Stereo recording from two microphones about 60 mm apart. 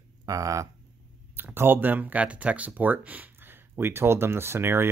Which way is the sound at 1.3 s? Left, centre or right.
Right.